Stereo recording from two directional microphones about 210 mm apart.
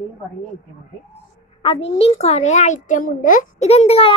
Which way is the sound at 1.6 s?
30° left (ahead or behind).